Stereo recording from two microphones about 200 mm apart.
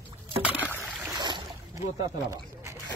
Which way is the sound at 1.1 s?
20° right (ahead or behind).